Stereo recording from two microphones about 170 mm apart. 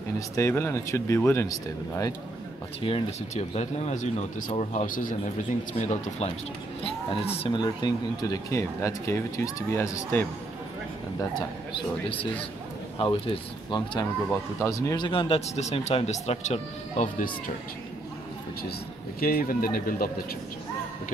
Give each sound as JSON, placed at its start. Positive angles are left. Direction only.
{"t": 0.4, "sound": "speech", "side_deg": 15}
{"t": 2.8, "sound": "speech", "side_deg": 35}
{"t": 11.1, "sound": "speech", "side_deg": 25}
{"t": 15.0, "sound": "speech", "side_deg": 30}
{"t": 19.1, "sound": "speech", "side_deg": 60}